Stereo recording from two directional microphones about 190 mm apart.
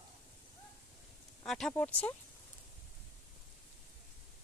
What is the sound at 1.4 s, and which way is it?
Speech, 5° left (ahead or behind).